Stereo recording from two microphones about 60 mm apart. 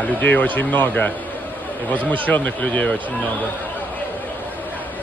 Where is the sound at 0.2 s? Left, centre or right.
Left.